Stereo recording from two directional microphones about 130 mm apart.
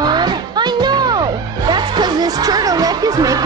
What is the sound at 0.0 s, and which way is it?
Music, 35° right (ahead or behind).